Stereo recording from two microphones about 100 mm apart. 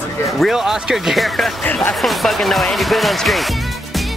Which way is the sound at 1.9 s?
Centre (ahead or behind).